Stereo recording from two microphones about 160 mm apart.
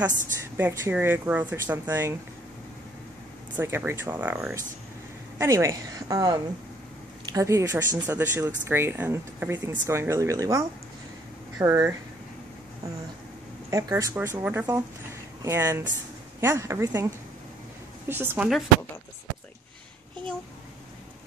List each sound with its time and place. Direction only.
0.6 s speech: 15° right (ahead or behind)
3.5 s speech: 15° right (ahead or behind)
13.7 s speech: 20° right (ahead or behind)